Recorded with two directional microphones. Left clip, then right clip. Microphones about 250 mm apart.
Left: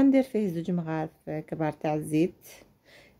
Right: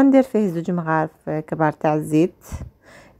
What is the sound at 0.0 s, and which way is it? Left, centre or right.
A woman's voice, centre.